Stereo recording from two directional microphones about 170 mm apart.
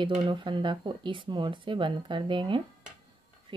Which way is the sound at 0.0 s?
30° right (ahead or behind).